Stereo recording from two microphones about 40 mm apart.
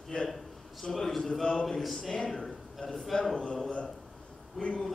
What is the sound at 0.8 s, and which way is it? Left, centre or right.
A man's voice, centre.